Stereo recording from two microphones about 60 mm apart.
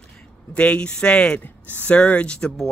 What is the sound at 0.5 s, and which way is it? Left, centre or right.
Speech, left.